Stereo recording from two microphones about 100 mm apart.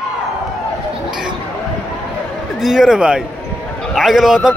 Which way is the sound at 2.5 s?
5° right (ahead or behind).